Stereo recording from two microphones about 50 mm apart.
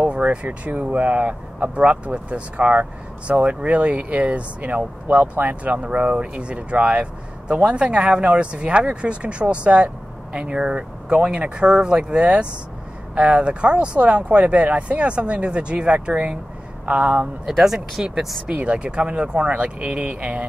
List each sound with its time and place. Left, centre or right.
0.1 s speech: right
17.5 s speech: centre
18.5 s speech: right